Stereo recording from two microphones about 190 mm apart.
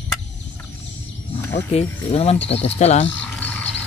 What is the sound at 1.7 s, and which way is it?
Speech, 30° left (ahead or behind).